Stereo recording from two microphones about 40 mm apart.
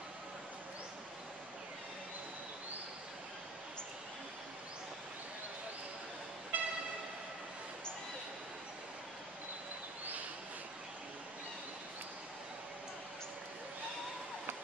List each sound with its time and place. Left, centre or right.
6.5 s train: right